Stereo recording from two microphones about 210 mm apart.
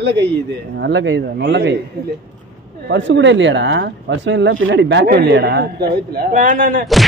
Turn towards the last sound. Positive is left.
turn(degrees=-40)  # may be behind; listen again after turning